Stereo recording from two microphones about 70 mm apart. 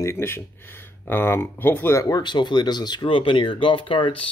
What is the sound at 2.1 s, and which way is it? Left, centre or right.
Speech, left.